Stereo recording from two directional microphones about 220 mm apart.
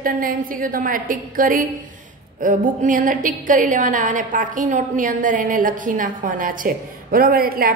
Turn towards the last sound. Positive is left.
turn(degrees=-40)  # may be behind; listen again after turning